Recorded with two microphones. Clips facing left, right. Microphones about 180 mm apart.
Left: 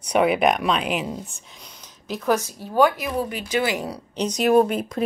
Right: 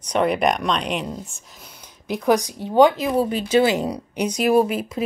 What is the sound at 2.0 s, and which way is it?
Speech, 15° right (ahead or behind).